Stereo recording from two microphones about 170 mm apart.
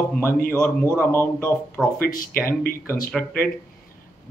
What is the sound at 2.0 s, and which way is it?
Speech, 55° left (ahead or behind).